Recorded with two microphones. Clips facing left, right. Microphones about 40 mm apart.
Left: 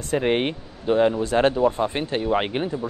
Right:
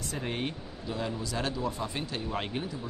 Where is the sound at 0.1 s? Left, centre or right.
Left.